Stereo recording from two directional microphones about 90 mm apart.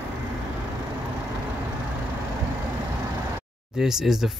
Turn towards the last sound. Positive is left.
turn(degrees=-5)  # may be behind; listen again after turning